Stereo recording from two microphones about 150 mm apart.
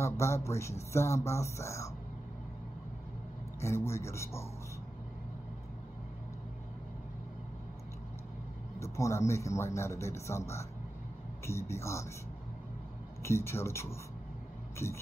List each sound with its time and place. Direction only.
0.0 s speech: 20° left (ahead or behind)
3.6 s speech: 15° left (ahead or behind)
8.7 s speech: 20° left (ahead or behind)
13.2 s speech: 15° left (ahead or behind)